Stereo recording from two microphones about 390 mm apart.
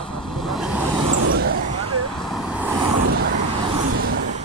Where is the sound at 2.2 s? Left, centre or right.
Centre.